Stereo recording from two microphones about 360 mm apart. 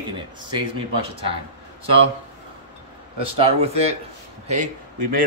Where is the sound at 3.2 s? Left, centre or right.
Centre.